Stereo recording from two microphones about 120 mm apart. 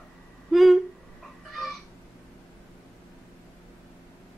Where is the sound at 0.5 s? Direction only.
Centre (ahead or behind).